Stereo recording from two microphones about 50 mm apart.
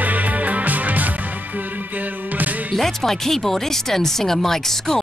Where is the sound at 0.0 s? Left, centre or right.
Right.